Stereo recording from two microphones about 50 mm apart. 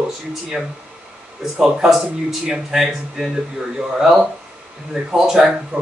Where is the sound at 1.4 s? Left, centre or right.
Centre.